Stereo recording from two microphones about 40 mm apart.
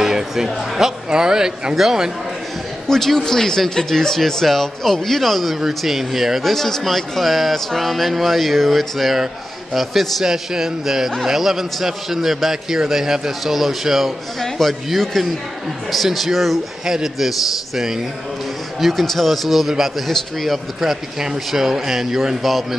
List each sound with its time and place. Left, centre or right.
0.0 s speech: centre
2.9 s a man's voice: centre
6.5 s a man's voice: centre
10.2 s a man's voice: centre
16.8 s speech: centre
18.8 s a man's voice: centre